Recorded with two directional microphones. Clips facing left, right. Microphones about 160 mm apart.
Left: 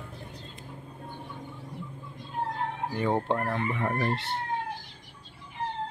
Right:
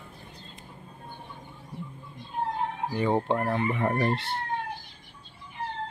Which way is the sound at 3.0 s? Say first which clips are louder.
Right 2 dB; centre (ahead or behind).